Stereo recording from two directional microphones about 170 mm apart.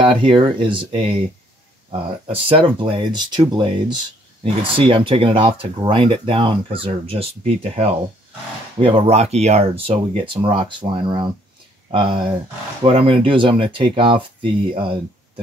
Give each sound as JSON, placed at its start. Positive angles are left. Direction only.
{"t": 0.0, "sound": "speech", "side_deg": -30}